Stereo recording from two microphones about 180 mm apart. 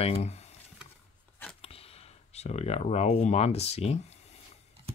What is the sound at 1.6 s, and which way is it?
Speech, 30° left (ahead or behind).